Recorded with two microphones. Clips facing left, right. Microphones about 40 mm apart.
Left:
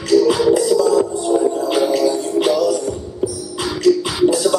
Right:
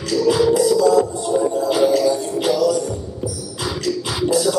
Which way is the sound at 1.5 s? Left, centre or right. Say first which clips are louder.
Left 1 dB; left.